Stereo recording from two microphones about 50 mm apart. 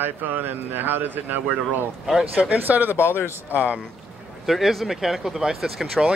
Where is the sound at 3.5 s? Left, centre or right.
Right.